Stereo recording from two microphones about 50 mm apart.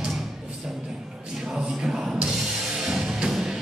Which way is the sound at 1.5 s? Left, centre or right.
Centre.